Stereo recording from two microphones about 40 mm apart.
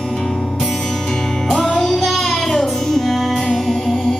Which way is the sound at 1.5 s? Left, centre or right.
Centre.